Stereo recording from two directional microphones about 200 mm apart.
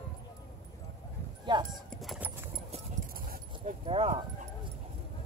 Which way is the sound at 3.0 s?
45° right (ahead or behind).